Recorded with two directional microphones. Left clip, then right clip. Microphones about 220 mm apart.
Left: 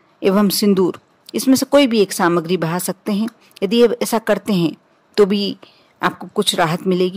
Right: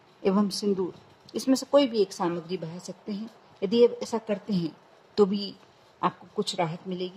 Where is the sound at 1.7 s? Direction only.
35° left (ahead or behind).